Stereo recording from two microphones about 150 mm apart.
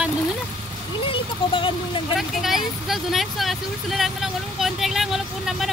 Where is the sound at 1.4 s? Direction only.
35° left (ahead or behind).